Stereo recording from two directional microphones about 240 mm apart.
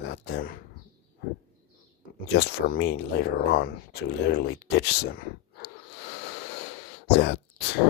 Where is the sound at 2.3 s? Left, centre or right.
Left.